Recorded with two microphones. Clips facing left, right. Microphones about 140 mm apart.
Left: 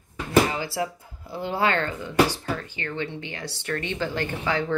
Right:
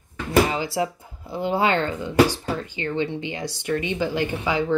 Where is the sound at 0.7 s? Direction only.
20° right (ahead or behind).